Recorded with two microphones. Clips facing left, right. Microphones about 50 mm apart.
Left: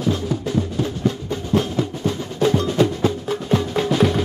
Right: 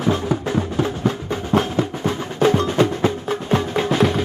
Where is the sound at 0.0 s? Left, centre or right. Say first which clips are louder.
Right 2 dB; right.